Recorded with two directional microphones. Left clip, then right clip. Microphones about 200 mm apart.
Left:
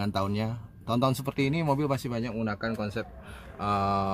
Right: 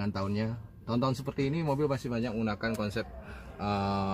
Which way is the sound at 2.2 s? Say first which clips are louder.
Left 1 dB; centre (ahead or behind).